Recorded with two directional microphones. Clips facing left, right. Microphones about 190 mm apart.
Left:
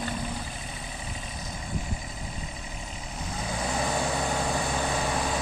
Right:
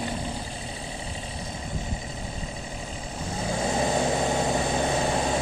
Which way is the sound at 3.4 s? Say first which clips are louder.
Right 4 dB; 25° right (ahead or behind).